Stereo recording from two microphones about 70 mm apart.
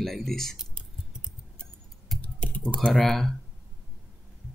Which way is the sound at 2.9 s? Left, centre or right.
Centre.